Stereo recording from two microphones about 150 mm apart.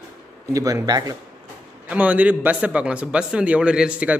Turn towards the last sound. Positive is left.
turn(degrees=-10)  # may be behind; listen again after turning